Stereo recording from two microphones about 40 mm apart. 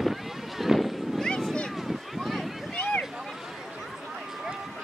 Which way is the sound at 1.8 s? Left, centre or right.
Centre.